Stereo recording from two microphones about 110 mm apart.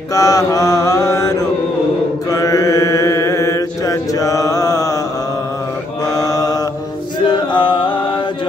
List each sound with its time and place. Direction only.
0.1 s mantra: 30° left (ahead or behind)
2.3 s mantra: 30° left (ahead or behind)
6.1 s mantra: 30° left (ahead or behind)
7.2 s chant: 45° left (ahead or behind)